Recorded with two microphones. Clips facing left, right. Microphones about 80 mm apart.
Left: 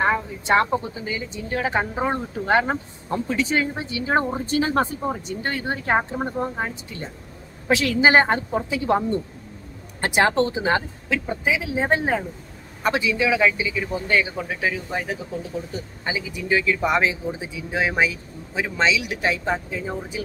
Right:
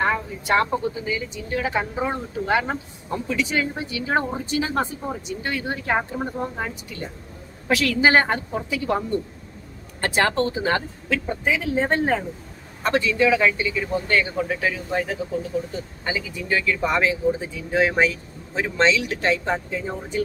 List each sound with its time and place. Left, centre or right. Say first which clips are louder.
0.0 s speech: left 1 dB; centre
1.0 s a woman's voice: right 1 dB; left
4.5 s speech: left 3 dB; left
5.9 s a woman's voice: left 2 dB; left
11.2 s speech: right 1 dB; centre